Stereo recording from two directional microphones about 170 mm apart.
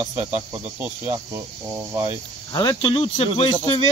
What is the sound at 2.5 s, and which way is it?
Speech, 25° left (ahead or behind).